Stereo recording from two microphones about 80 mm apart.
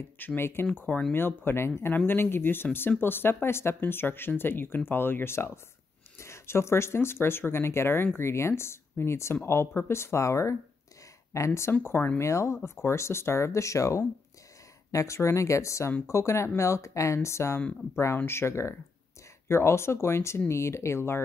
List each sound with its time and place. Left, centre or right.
0.4 s speech: left
12.2 s speech: left